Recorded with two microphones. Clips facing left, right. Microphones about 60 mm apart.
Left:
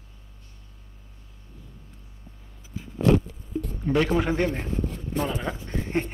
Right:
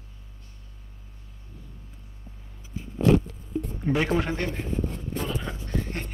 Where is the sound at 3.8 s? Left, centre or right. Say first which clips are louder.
Left 2 dB; centre.